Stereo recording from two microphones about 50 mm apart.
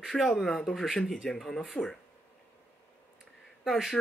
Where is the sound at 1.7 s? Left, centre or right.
Left.